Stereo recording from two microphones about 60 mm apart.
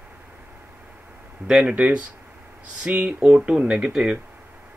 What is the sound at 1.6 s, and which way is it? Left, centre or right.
Speech, right.